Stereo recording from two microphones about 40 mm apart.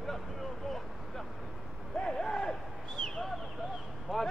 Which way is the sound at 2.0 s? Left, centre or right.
Centre.